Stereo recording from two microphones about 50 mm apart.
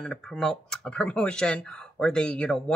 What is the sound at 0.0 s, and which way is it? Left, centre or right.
Speech, centre.